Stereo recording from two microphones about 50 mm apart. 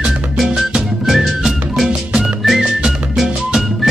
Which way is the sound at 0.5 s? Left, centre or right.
Centre.